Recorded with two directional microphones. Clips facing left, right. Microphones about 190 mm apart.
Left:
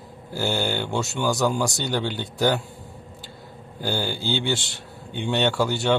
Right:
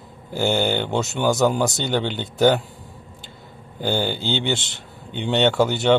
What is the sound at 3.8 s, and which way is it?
Speech, 25° right (ahead or behind).